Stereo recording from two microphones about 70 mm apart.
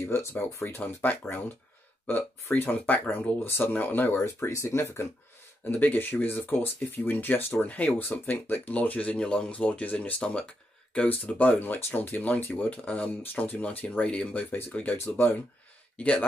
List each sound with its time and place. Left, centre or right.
0.0 s speech: left; by 16.3 s centre